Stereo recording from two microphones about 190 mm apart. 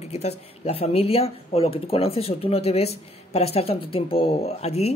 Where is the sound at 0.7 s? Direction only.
30° left (ahead or behind).